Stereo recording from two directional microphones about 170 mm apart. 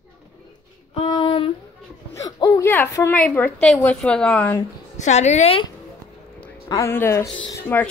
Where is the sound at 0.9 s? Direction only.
30° left (ahead or behind); by 4.6 s 10° left (ahead or behind).